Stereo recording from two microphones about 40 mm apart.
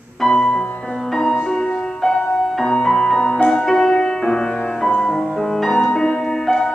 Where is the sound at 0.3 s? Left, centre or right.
Centre.